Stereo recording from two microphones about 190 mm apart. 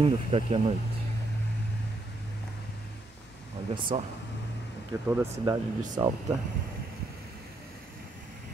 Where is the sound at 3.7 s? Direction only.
25° right (ahead or behind).